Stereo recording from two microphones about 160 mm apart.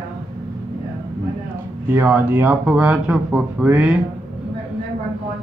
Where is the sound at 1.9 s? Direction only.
15° right (ahead or behind).